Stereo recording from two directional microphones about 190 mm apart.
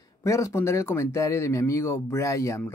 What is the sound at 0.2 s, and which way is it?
Speech, 15° left (ahead or behind).